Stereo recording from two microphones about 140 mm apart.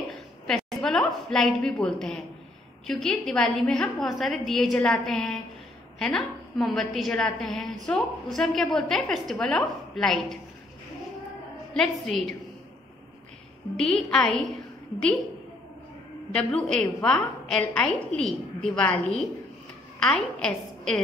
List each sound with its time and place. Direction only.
0.7 s a woman's voice: 5° left (ahead or behind)
11.7 s a woman's voice: centre (ahead or behind)
13.7 s a woman's voice: 5° left (ahead or behind)
16.5 s a woman's voice: 5° left (ahead or behind)